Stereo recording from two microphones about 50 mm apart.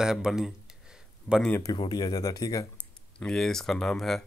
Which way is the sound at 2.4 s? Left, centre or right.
Left.